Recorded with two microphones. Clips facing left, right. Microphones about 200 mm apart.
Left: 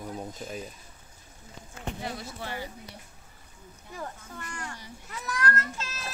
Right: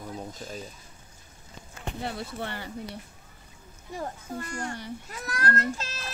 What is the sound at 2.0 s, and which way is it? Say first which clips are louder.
Speech: right 6 dB; 60° right (ahead or behind).